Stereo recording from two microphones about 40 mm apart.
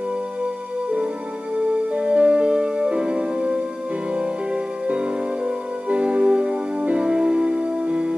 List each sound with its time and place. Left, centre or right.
1.9 s music: right